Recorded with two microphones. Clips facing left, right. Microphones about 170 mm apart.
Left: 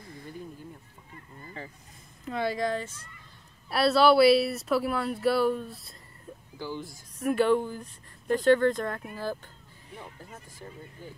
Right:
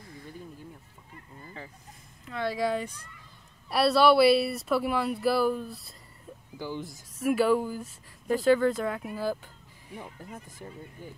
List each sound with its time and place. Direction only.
1.4 s a sound: centre (ahead or behind)
2.4 s speech: 5° right (ahead or behind)
6.6 s speech: 15° right (ahead or behind)
7.2 s speech: 5° right (ahead or behind)